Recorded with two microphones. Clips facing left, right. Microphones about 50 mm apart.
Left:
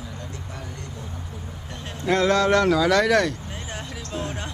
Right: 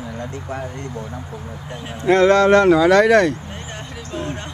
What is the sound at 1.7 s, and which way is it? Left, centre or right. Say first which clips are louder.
Speech: right 4 dB; centre.